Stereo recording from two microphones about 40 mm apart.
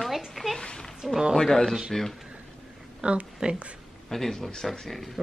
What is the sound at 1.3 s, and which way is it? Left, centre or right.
Speech, centre.